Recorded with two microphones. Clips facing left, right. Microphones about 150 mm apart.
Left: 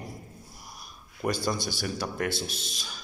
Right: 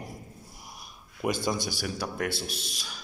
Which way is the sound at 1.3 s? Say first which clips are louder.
Even; 15° right (ahead or behind).